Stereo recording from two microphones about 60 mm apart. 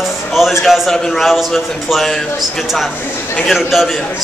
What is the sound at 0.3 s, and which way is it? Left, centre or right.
A man's voice, centre.